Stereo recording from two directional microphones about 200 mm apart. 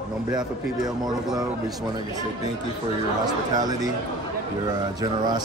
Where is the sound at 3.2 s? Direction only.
20° right (ahead or behind).